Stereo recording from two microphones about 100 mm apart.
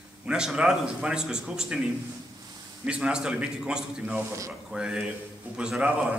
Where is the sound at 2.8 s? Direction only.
10° right (ahead or behind).